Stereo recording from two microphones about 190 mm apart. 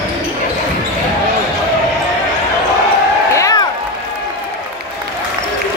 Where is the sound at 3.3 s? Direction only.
15° left (ahead or behind).